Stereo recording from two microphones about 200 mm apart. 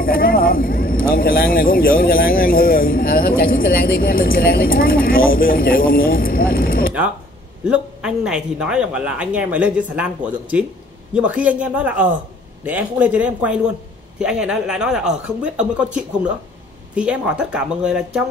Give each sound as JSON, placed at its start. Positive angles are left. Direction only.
{"t": 0.0, "sound": "speech", "side_deg": 45}
{"t": 7.6, "sound": "speech", "side_deg": -5}
{"t": 16.9, "sound": "speech", "side_deg": -5}